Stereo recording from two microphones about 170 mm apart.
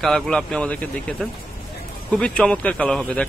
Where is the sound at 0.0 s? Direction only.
5° left (ahead or behind).